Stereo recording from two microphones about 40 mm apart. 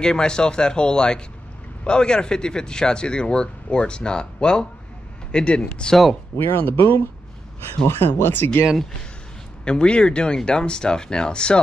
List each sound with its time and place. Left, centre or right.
0.0 s speech: centre
6.4 s speech: left
7.9 s speech: left
9.7 s speech: left